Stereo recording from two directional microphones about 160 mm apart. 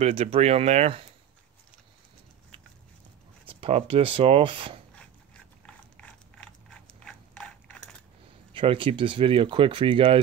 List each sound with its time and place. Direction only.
0.0 s speech: 40° right (ahead or behind)
3.4 s speech: 35° right (ahead or behind)
4.9 s a sound: 5° left (ahead or behind)
8.5 s speech: 30° right (ahead or behind)